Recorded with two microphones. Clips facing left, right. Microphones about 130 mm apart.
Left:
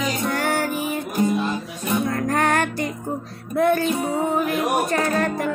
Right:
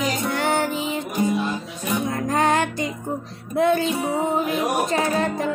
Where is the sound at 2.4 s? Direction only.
55° left (ahead or behind).